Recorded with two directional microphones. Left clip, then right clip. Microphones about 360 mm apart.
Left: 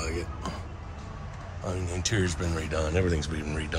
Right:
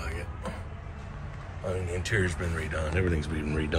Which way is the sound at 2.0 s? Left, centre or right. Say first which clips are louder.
Left 1 dB; centre.